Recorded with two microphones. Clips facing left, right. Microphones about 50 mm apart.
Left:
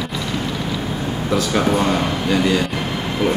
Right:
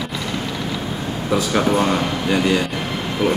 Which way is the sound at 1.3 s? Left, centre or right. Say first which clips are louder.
Even; centre.